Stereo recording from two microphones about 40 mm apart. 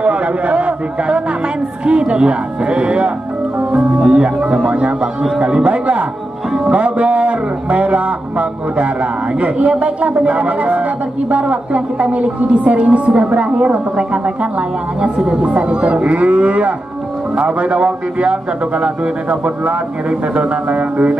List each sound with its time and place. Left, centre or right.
0.0 s a man's voice: right
4.1 s speech: right